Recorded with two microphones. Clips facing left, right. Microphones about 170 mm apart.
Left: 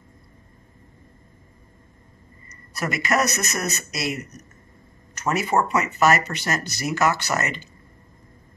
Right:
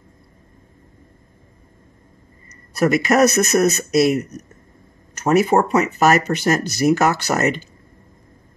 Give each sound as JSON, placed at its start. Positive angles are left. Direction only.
{"t": 2.7, "sound": "speech", "side_deg": -50}